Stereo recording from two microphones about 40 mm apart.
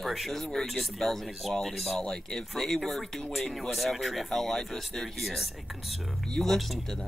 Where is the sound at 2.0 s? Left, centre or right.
Centre.